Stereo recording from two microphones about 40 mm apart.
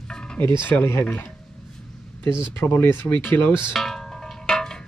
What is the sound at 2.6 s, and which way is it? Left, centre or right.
Speech, left.